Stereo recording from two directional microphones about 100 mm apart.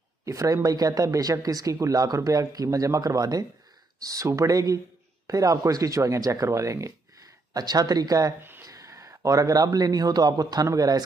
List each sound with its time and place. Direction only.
0.2 s speech: 35° right (ahead or behind)
8.4 s a sound: 20° right (ahead or behind)
8.6 s a man's voice: 35° right (ahead or behind)